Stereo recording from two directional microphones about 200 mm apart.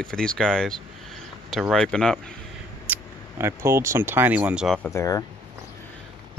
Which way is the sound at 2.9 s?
10° right (ahead or behind).